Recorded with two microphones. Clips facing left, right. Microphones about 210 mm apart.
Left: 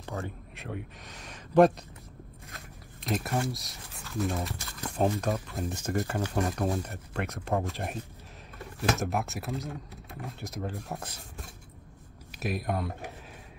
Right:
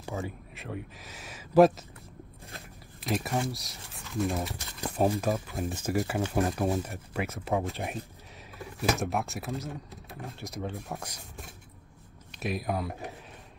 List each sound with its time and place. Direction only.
0.0 s speech: centre (ahead or behind)
3.0 s speech: centre (ahead or behind)
12.3 s speech: centre (ahead or behind)